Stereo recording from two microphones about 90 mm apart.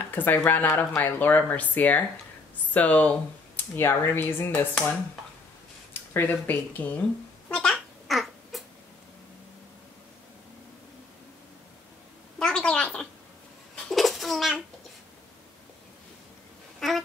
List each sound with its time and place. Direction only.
0.1 s speech: 20° left (ahead or behind)
6.1 s a child's voice: 20° left (ahead or behind)
8.1 s babbling: centre (ahead or behind)
12.4 s a sound: 10° left (ahead or behind)
13.7 s a sound: 5° left (ahead or behind)
16.8 s duck: 5° left (ahead or behind)